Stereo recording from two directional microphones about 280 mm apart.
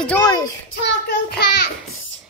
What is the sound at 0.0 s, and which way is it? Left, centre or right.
Speech, centre.